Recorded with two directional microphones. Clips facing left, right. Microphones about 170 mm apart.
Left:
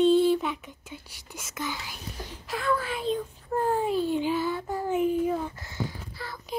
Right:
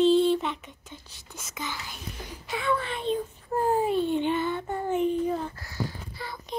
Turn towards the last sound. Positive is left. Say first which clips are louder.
# right 1 dB
turn(degrees=0)  # may be behind; listen again after turning